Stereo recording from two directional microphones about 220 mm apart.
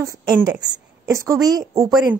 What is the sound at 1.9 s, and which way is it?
Speech, centre (ahead or behind).